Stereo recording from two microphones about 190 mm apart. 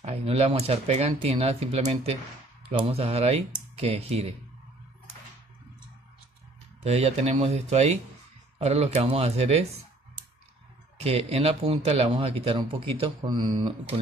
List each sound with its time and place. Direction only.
0.0 s speech: 30° right (ahead or behind)
6.8 s speech: 35° right (ahead or behind)
11.0 s speech: 35° right (ahead or behind)